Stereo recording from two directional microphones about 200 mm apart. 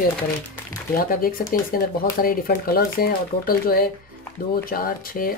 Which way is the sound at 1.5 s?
45° left (ahead or behind).